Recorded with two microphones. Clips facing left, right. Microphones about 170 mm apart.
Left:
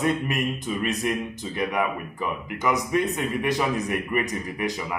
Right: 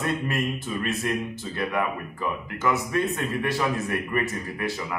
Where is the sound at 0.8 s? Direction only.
15° left (ahead or behind).